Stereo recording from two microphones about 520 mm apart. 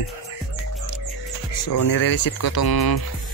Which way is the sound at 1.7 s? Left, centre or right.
Left.